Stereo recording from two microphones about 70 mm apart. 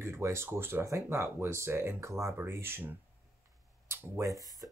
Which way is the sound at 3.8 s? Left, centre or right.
Right.